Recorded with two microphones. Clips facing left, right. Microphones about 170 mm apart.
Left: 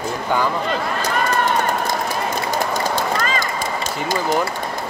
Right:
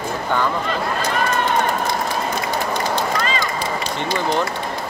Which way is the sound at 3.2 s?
45° left (ahead or behind).